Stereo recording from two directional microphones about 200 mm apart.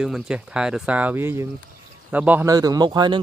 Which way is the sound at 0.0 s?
5° right (ahead or behind).